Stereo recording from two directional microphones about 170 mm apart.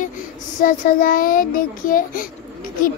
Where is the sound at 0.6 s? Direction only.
55° left (ahead or behind).